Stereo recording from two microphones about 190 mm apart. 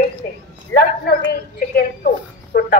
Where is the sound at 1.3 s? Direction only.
50° left (ahead or behind).